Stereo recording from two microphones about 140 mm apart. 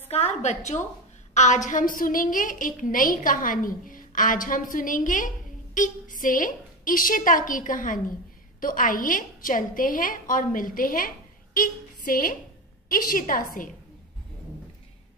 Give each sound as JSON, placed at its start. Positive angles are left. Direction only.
{"t": 0.1, "sound": "a woman's voice", "side_deg": 50}